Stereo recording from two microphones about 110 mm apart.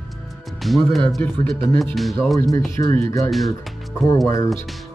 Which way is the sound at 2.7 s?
25° left (ahead or behind).